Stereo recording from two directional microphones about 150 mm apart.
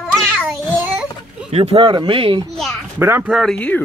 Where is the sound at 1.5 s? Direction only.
45° right (ahead or behind).